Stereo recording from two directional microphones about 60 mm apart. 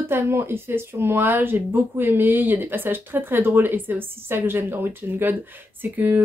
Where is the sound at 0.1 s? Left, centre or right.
Right.